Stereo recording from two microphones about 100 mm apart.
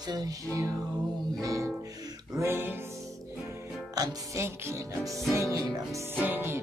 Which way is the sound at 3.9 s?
40° right (ahead or behind).